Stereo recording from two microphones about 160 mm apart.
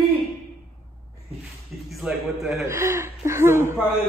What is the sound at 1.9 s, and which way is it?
Speech, centre (ahead or behind).